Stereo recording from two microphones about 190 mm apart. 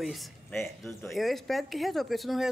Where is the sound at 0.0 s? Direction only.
Centre (ahead or behind).